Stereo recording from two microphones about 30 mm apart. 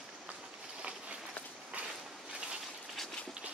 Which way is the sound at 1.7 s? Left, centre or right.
Right.